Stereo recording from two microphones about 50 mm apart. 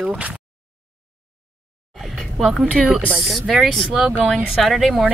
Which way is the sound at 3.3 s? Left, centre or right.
Centre.